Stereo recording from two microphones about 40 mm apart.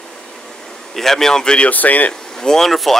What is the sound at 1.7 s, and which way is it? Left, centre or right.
Speech, left.